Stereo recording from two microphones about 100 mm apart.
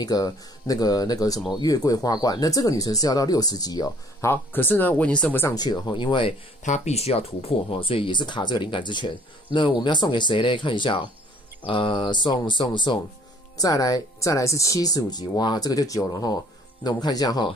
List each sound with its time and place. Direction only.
0.0 s speech: 40° left (ahead or behind)
4.3 s speech: 20° left (ahead or behind)
5.5 s speech: 45° left (ahead or behind)
6.9 s speech: 90° left; by 13.0 s 50° left (ahead or behind)
13.6 s speech: 40° left (ahead or behind)